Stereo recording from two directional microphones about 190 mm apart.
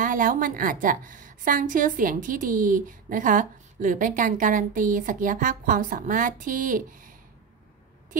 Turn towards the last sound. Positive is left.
turn(degrees=-45)  # may be behind; listen again after turning